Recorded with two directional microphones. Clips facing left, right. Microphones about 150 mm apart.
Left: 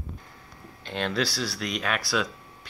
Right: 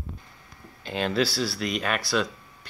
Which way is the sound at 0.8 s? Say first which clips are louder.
Right 3 dB; 5° right (ahead or behind).